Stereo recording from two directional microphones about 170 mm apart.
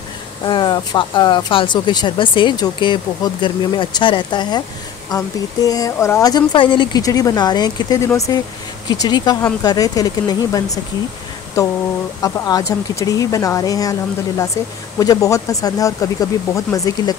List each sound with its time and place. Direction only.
0.5 s speech: 25° left (ahead or behind)
12.2 s speech: 20° left (ahead or behind)